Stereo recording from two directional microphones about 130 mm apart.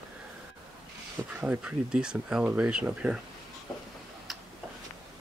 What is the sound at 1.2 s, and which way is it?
Speech, 10° right (ahead or behind).